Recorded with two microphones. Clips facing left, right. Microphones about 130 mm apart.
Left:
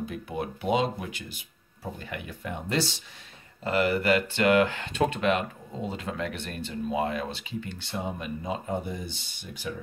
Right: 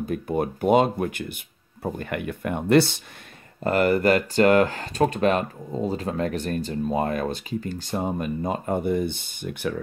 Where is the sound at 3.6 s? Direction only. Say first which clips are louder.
Right 5 dB; 50° right (ahead or behind).